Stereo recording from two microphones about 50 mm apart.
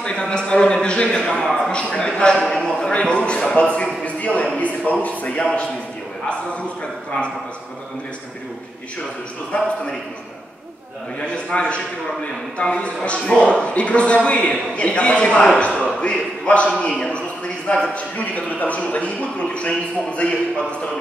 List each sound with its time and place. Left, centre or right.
0.0 s a man's voice: centre
1.2 s speech: centre
1.7 s a man's voice: left
9.5 s a man's voice: left
11.1 s a man's voice: left
17.9 s a man's voice: left